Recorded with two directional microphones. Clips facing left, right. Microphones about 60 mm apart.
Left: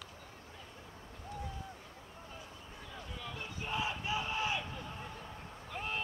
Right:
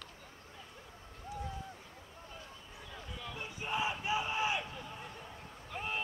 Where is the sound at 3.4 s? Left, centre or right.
Centre.